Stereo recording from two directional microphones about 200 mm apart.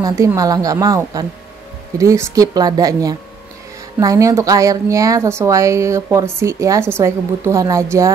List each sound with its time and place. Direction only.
0.0 s a woman's voice: 15° right (ahead or behind)